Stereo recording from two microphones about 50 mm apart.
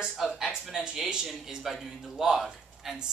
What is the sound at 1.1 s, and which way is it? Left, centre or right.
Speech, centre.